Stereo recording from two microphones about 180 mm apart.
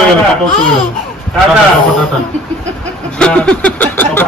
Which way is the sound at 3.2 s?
5° left (ahead or behind).